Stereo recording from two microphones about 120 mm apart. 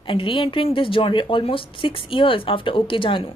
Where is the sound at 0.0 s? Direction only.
45° left (ahead or behind).